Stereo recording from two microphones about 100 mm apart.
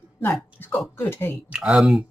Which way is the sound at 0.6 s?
20° left (ahead or behind).